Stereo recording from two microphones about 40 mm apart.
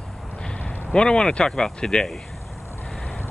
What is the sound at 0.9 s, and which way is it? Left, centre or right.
Speech, left.